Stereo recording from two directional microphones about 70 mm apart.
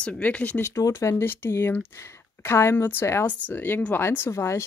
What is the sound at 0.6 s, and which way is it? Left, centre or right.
Speech, left.